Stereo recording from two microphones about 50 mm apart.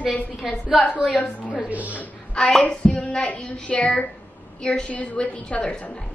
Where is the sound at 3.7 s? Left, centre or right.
Left.